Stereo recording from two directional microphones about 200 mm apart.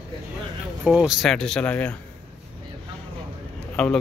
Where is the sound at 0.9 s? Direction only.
Centre (ahead or behind).